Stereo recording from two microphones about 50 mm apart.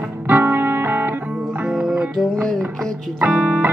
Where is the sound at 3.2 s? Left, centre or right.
Right.